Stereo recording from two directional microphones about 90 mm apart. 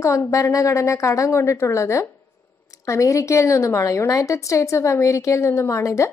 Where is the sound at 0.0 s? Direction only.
35° left (ahead or behind).